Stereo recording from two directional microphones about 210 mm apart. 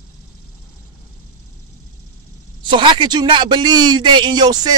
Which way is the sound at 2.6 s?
20° right (ahead or behind).